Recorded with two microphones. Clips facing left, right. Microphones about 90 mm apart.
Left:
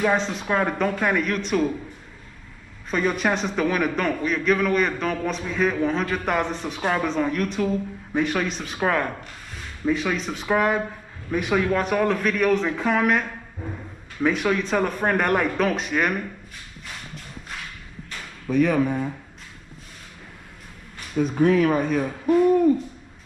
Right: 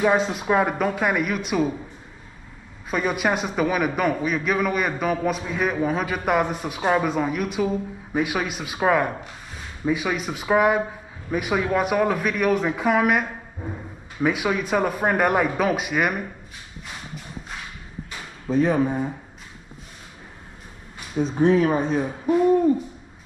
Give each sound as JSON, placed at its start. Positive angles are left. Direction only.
{"t": 0.0, "sound": "a man's voice", "side_deg": -10}
{"t": 2.9, "sound": "a man's voice", "side_deg": -10}
{"t": 18.5, "sound": "speech", "side_deg": -25}
{"t": 21.4, "sound": "speech", "side_deg": -25}